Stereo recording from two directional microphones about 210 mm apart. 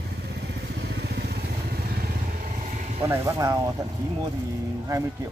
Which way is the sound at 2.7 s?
35° right (ahead or behind).